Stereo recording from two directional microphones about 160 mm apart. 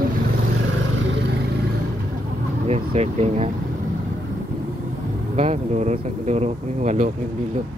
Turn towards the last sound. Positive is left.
turn(degrees=-55)  # may be behind; listen again after turning